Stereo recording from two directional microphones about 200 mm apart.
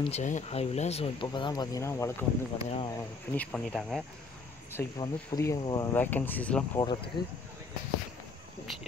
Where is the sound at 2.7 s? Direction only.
30° left (ahead or behind).